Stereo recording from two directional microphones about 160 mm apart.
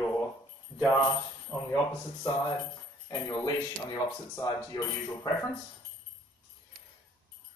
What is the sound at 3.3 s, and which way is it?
Speech, 20° left (ahead or behind).